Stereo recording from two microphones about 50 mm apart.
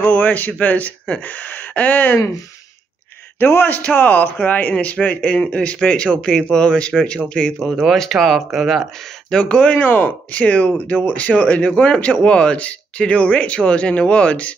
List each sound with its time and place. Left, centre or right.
0.0 s speech: left
3.3 s a man's voice: left; by 7.7 s centre
7.7 s speech: centre
9.3 s a man's voice: left
9.8 s speech: left
10.3 s a man's voice: left